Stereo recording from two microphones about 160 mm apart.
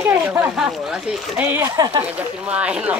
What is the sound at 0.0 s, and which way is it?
Speech, 15° right (ahead or behind).